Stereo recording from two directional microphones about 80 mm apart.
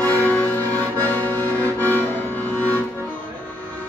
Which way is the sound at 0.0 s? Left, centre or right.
Left.